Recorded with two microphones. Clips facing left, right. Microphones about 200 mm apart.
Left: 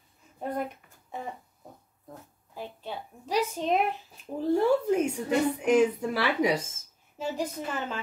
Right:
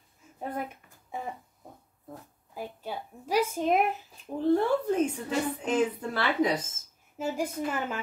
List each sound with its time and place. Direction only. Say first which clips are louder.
0.4 s speech: left 3 dB; 5° right (ahead or behind)
2.5 s a sound: right 1 dB; 10° right (ahead or behind)
4.5 s a woman's voice: left 1 dB; 10° left (ahead or behind)
7.2 s a woman's voice: right 1 dB; 10° right (ahead or behind)